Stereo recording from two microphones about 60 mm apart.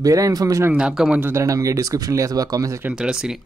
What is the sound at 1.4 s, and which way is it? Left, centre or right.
Speech, right.